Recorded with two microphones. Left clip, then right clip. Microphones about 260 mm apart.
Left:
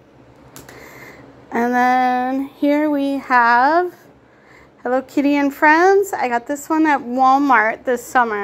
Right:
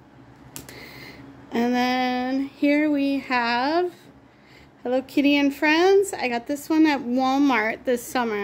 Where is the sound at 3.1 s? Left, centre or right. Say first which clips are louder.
Left 9 dB; centre.